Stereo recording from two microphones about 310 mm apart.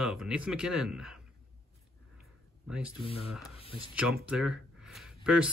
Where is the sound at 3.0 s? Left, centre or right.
Centre.